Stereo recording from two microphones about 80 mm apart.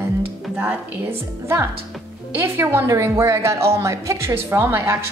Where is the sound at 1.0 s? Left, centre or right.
Right.